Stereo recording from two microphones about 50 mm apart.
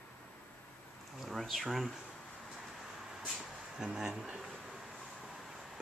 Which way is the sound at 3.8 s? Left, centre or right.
Centre.